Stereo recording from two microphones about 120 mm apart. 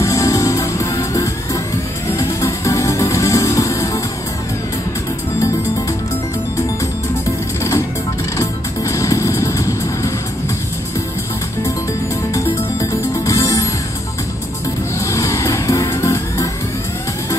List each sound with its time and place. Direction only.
0.0 s music: 25° left (ahead or behind)
8.4 s music: 25° left (ahead or behind)
13.1 s music: 30° left (ahead or behind)
15.0 s music: 25° left (ahead or behind)